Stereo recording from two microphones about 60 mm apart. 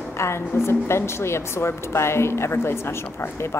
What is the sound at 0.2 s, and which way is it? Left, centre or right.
A woman's voice, left.